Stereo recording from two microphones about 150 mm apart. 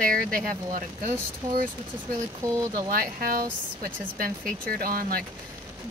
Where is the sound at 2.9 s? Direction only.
75° right (ahead or behind).